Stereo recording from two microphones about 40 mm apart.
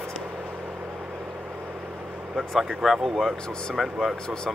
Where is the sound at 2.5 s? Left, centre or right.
Centre.